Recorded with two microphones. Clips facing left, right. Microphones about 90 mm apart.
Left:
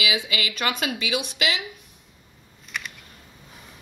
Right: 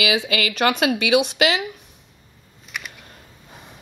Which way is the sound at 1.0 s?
70° right (ahead or behind).